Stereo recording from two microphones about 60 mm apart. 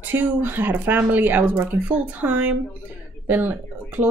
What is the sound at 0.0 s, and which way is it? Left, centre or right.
Speech, right.